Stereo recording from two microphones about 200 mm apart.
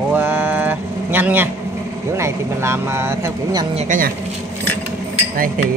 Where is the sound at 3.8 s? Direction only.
40° right (ahead or behind).